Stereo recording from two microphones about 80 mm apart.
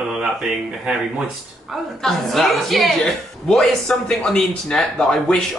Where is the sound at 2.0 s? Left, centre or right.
Centre.